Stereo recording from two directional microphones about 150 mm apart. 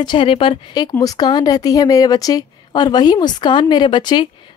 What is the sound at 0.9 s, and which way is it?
Speech, 25° left (ahead or behind).